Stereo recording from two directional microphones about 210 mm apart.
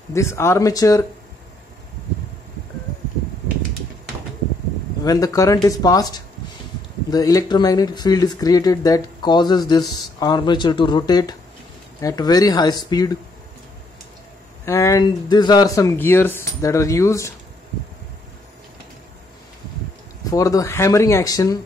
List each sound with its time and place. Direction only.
0.1 s speech: 15° left (ahead or behind)
5.0 s speech: 15° left (ahead or behind)
14.6 s speech: 15° left (ahead or behind)
20.2 s speech: 15° left (ahead or behind)